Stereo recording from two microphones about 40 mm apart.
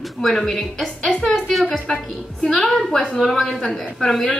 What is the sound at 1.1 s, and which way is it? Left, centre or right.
Speech, left.